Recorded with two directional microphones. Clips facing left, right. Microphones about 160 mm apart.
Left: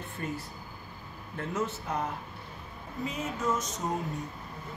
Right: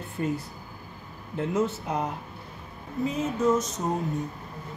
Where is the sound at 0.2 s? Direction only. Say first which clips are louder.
Right 8 dB; 25° right (ahead or behind).